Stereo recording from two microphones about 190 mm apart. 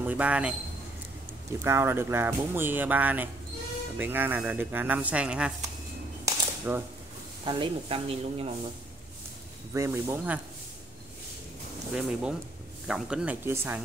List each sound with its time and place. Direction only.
0.0 s speech: 10° right (ahead or behind)
1.6 s speech: 15° right (ahead or behind)
6.2 s cap gun: 10° right (ahead or behind)
7.4 s speech: 25° right (ahead or behind)
9.8 s speech: 15° right (ahead or behind)
11.9 s speech: 5° right (ahead or behind)